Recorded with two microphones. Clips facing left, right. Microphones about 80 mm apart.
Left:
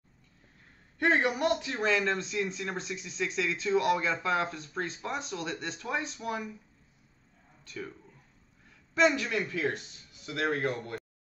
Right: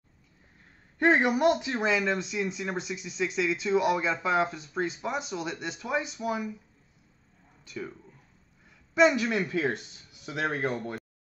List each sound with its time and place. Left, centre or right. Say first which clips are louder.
1.1 s speech: right 4 dB; centre
2.0 s speech: right 1 dB; centre
7.6 s speech: right 3 dB; centre
8.9 s speech: right 3 dB; centre